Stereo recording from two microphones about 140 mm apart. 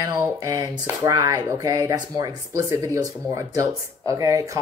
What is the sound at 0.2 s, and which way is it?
Speech, 25° right (ahead or behind).